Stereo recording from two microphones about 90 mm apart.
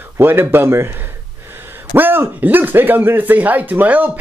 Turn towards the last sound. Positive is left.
turn(degrees=-20)  # may be behind; listen again after turning